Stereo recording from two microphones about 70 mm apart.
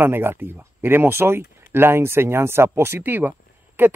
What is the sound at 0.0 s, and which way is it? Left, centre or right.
Speech, right.